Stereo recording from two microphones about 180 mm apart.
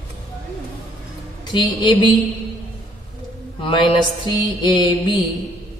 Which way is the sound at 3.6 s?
25° left (ahead or behind).